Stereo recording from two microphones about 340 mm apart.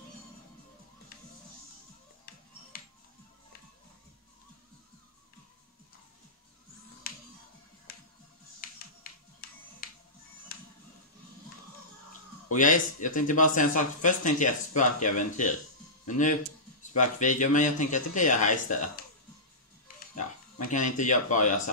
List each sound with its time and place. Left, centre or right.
7.0 s music: left
8.6 s music: left
9.8 s music: left
12.4 s speech: left
20.2 s speech: left